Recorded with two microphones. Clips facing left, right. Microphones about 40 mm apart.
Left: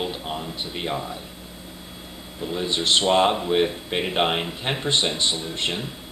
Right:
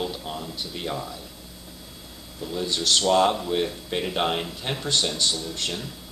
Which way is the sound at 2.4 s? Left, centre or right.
Left.